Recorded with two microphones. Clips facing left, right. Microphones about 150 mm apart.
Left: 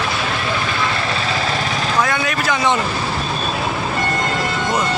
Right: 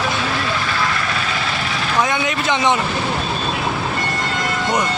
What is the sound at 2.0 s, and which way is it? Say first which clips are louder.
Vehicle: right 1 dB; 20° right (ahead or behind).